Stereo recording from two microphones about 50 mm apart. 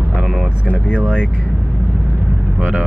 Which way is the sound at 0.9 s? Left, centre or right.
Right.